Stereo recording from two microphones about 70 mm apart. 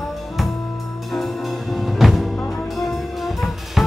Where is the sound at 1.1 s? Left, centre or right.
Centre.